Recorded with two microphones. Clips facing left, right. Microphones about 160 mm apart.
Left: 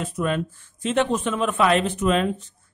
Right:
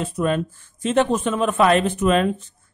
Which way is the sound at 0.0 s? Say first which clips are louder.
Right 3 dB; 35° right (ahead or behind).